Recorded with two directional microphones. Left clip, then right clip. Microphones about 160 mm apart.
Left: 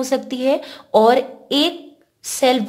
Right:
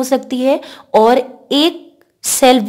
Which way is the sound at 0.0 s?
30° right (ahead or behind).